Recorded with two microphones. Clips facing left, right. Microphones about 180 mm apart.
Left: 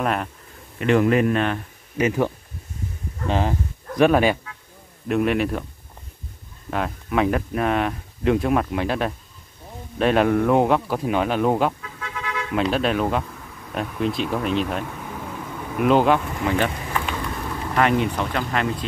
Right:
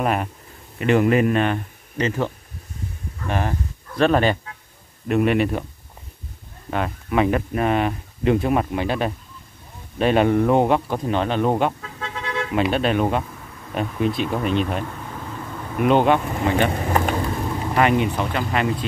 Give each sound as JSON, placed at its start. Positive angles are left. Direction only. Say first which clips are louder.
{"t": 0.0, "sound": "speech", "louder": "right 2 dB", "side_deg": -5}
{"t": 2.0, "sound": "speech", "louder": "left 2 dB", "side_deg": 10}
{"t": 6.7, "sound": "speech", "louder": "right 1 dB", "side_deg": 0}
{"t": 12.0, "sound": "a sound", "louder": "right 3 dB", "side_deg": -30}
{"t": 12.5, "sound": "speech", "louder": "right 1 dB", "side_deg": 0}
{"t": 16.7, "sound": "a sound", "louder": "right 6 dB", "side_deg": -50}
{"t": 17.2, "sound": "vehicle", "louder": "right 4 dB", "side_deg": -30}
{"t": 17.7, "sound": "speech", "louder": "right 1 dB", "side_deg": -5}